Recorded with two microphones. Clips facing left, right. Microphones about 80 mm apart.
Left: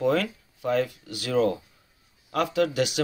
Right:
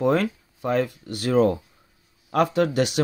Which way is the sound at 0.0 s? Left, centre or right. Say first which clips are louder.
Right 3 dB; right.